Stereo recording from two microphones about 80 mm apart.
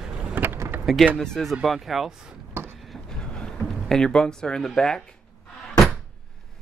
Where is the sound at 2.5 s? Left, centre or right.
Right.